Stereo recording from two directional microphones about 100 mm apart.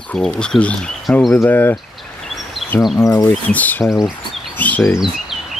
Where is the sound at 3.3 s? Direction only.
15° left (ahead or behind).